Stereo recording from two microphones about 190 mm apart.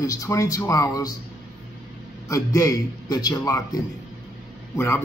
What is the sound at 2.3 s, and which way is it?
Speech, 15° left (ahead or behind).